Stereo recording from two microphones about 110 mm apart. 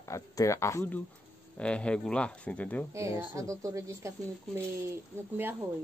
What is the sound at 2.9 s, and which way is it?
Speech, 30° right (ahead or behind).